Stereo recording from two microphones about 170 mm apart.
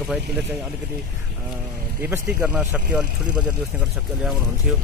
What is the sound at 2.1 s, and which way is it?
Speech, 10° right (ahead or behind).